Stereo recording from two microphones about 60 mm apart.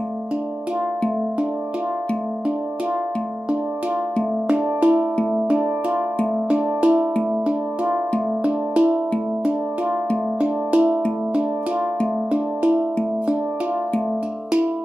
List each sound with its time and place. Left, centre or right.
4.5 s music: right
10.4 s music: right
12.3 s music: centre